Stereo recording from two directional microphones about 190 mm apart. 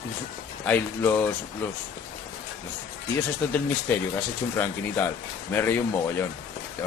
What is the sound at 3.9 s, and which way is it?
Speech, 10° left (ahead or behind).